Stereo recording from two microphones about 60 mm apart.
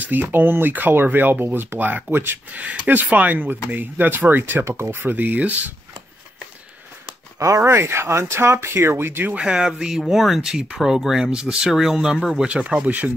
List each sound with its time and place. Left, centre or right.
0.0 s speech: right
2.5 s speech: right
7.3 s speech: right
9.4 s speech: centre